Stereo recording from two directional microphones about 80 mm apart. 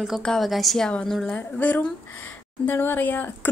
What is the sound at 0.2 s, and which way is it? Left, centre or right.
Speech, centre.